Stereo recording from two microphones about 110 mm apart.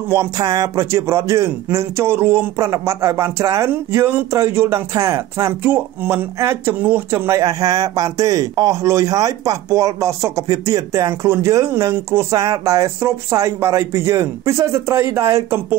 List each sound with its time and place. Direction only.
0.4 s speech: 30° right (ahead or behind)